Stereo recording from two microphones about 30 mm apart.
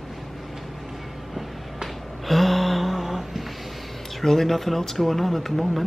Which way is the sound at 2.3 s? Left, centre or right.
Centre.